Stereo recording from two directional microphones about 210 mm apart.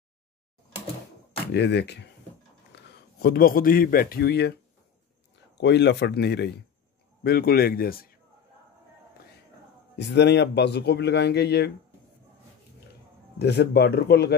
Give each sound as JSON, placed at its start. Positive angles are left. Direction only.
{"t": 1.5, "sound": "a man's voice", "side_deg": 55}
{"t": 5.6, "sound": "speech", "side_deg": 55}
{"t": 9.9, "sound": "speech", "side_deg": 55}
{"t": 13.4, "sound": "speech", "side_deg": 50}